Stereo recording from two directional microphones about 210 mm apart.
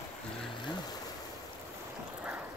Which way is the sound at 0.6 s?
20° left (ahead or behind).